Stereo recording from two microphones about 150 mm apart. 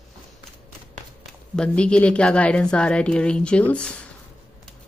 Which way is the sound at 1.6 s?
5° left (ahead or behind).